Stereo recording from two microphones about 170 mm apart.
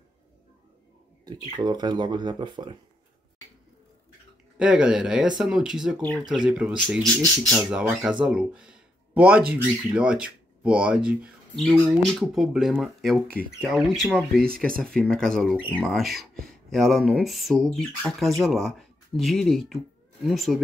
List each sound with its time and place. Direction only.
1.2 s speech: 25° right (ahead or behind)
4.6 s speech: 5° right (ahead or behind)